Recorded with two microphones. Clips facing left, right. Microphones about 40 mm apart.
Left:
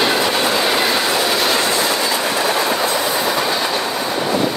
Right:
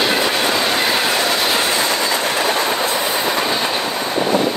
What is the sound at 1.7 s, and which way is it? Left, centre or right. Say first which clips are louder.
Train: even; right.